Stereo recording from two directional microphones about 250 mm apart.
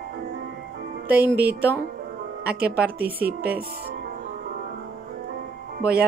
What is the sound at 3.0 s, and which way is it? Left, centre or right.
Speech, right.